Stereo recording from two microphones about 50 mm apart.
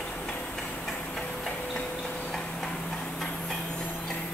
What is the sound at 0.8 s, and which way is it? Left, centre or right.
Music, centre.